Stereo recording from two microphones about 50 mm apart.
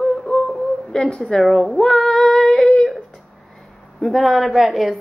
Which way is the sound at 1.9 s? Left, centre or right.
Centre.